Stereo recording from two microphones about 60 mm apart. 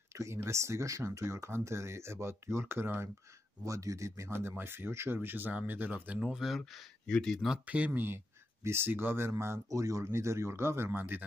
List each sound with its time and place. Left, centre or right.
0.1 s speech: right
3.6 s speech: right
4.3 s speech: right
5.5 s speech: right
6.2 s speech: centre
7.1 s speech: centre
7.6 s speech: right
8.6 s speech: right
9.7 s speech: right